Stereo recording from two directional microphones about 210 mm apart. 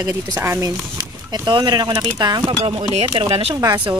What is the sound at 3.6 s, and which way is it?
Speech, 15° right (ahead or behind).